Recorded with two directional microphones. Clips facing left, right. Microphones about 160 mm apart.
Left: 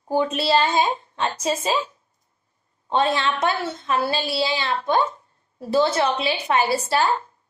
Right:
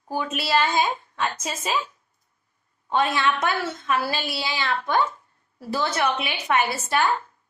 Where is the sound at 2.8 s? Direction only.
30° left (ahead or behind).